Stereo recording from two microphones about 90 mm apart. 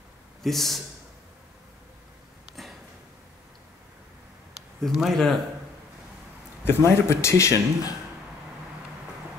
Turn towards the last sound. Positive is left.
turn(degrees=35)  # may be behind; listen again after turning